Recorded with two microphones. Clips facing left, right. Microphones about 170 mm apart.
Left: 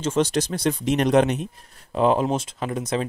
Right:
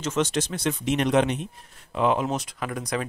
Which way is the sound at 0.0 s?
30° left (ahead or behind).